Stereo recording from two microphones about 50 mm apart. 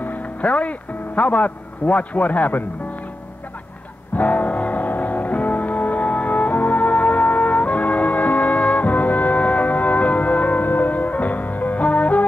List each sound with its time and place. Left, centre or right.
0.0 s speech: left
4.2 s music: left